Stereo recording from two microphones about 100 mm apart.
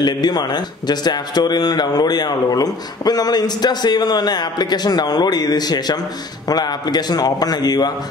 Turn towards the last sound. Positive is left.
turn(degrees=40)  # may be behind; listen again after turning